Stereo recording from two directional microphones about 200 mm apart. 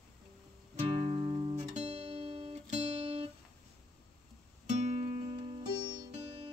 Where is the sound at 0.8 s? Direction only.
30° right (ahead or behind).